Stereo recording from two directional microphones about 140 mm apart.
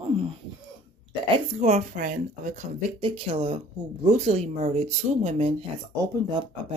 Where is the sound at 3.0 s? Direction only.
45° right (ahead or behind).